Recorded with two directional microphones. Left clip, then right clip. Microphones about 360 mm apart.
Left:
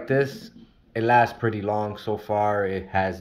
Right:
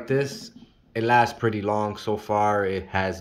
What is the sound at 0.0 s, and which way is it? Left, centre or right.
Speech, centre.